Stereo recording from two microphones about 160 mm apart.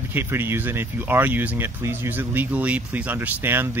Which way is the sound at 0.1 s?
15° right (ahead or behind).